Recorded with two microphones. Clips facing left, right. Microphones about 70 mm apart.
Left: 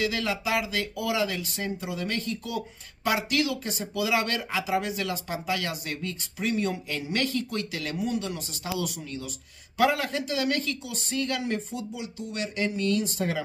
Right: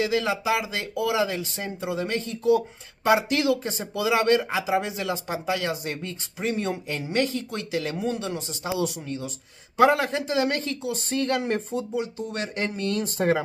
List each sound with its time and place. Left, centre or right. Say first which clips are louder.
0.0 s speech: right 4 dB; right